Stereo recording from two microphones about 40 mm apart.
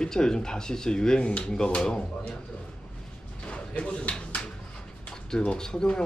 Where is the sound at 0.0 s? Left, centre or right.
Centre.